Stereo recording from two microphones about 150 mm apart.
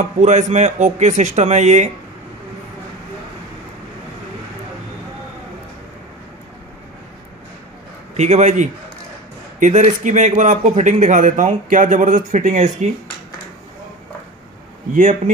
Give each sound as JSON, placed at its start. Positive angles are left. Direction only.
{"t": 0.0, "sound": "speech", "side_deg": -50}
{"t": 8.2, "sound": "a man's voice", "side_deg": -50}
{"t": 15.0, "sound": "a man's voice", "side_deg": -60}